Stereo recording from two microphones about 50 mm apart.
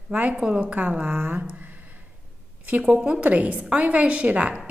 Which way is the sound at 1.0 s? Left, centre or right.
Right.